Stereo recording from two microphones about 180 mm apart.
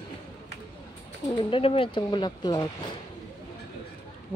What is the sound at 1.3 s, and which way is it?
Speech, 30° left (ahead or behind).